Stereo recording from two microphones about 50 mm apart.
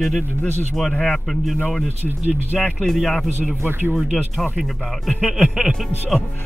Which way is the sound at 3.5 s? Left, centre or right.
Right.